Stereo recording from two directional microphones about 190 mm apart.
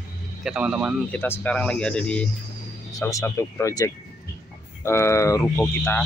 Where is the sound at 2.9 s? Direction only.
15° left (ahead or behind).